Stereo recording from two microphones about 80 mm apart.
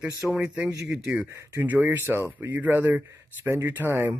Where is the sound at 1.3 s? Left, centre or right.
Right.